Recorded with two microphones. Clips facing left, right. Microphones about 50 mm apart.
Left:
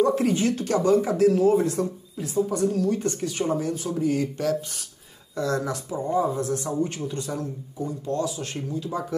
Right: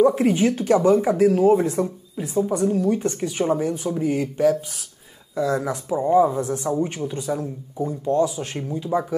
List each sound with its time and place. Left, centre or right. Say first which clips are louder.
0.0 s speech: right 4 dB; centre
5.7 s speech: right 7 dB; right
8.0 s speech: right 8 dB; right